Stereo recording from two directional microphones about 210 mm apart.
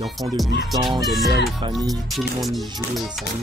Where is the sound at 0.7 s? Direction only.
15° right (ahead or behind).